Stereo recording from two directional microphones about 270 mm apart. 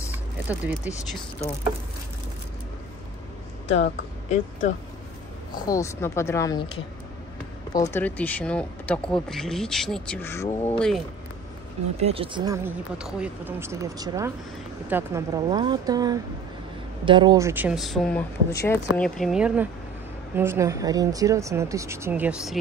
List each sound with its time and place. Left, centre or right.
0.5 s speech: centre
4.3 s speech: left
5.7 s a woman's voice: centre
12.0 s speech: right; by 22.6 s centre